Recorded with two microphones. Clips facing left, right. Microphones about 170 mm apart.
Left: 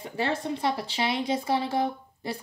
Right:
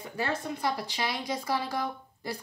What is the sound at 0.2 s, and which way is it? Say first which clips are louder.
Speech: left 3 dB; 25° left (ahead or behind).